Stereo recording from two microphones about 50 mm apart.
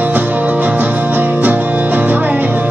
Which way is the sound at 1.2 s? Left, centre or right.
Right.